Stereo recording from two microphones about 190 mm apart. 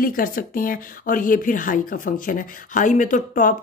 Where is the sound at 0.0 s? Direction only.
50° left (ahead or behind).